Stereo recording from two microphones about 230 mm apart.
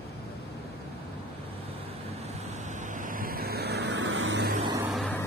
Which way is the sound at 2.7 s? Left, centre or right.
Right.